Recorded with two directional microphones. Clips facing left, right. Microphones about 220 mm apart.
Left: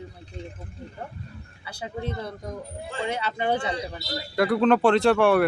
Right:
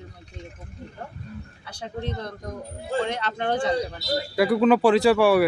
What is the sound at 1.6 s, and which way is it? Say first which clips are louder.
Speech: even; 5° left (ahead or behind).